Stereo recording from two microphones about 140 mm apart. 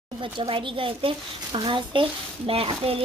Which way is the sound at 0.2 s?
40° right (ahead or behind).